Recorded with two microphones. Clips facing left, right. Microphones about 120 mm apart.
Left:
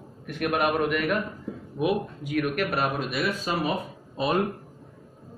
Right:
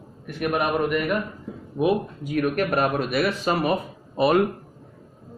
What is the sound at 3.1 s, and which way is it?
Speech, 70° right (ahead or behind).